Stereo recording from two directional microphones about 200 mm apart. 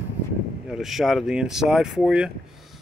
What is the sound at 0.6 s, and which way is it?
Speech, centre (ahead or behind).